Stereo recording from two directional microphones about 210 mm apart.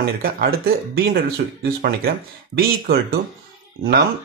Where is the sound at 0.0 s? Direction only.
45° right (ahead or behind).